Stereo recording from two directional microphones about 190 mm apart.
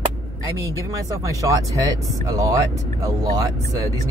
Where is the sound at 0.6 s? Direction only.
15° right (ahead or behind).